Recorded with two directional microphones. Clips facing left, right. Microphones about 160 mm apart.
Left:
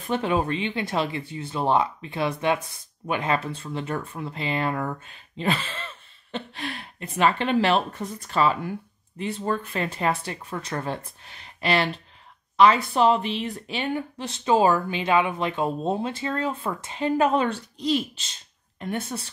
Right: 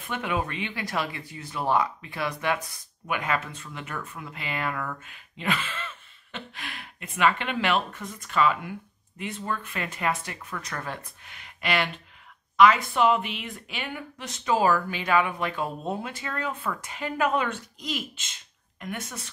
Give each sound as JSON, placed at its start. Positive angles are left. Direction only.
{"t": 0.0, "sound": "speech", "side_deg": 30}